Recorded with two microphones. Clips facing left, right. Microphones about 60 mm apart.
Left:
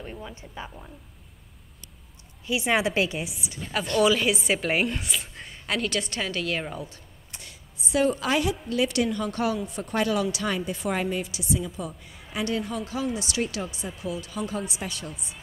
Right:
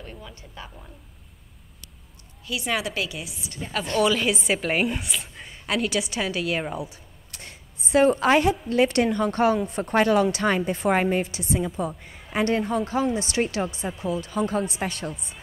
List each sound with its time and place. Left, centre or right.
0.0 s speech: centre
0.7 s speech: centre
2.4 s a woman's voice: left
4.0 s a woman's voice: centre
7.4 s a woman's voice: right